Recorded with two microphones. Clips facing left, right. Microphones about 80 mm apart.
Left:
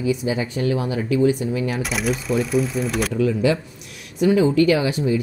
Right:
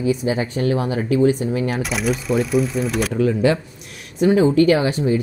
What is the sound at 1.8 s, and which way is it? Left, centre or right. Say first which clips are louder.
Speech: right 2 dB; centre.